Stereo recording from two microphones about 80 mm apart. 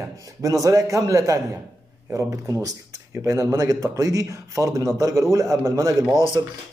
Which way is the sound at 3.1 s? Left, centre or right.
Right.